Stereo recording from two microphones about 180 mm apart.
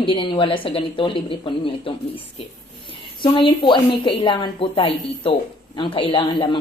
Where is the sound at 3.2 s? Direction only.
25° left (ahead or behind).